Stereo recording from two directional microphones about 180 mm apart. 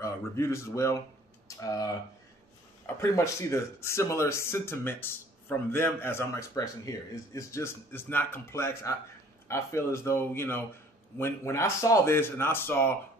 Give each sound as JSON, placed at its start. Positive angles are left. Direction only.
{"t": 0.0, "sound": "speech", "side_deg": 15}
{"t": 3.0, "sound": "speech", "side_deg": 15}